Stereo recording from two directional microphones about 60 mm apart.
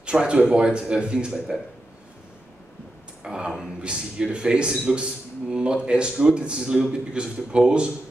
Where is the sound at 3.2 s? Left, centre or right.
Centre.